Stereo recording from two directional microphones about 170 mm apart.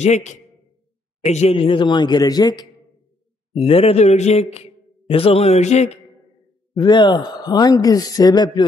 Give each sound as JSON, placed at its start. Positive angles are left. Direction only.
{"t": 0.0, "sound": "a man's voice", "side_deg": 45}
{"t": 3.5, "sound": "a man's voice", "side_deg": 35}
{"t": 6.7, "sound": "speech", "side_deg": 25}